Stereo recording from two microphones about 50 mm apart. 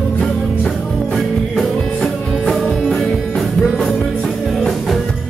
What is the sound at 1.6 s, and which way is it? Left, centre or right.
Music, centre.